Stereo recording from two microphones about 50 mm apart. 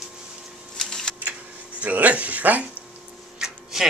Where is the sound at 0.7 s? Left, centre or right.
Centre.